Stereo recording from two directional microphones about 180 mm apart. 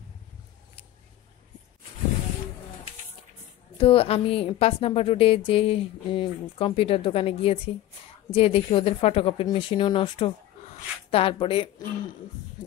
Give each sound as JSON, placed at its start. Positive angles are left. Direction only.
{"t": 3.7, "sound": "a woman's voice", "side_deg": 30}